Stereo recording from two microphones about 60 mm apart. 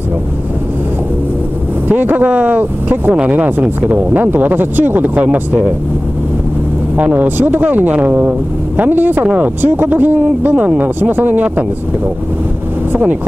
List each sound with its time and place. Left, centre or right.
1.9 s speech: right
7.0 s speech: right
12.9 s speech: right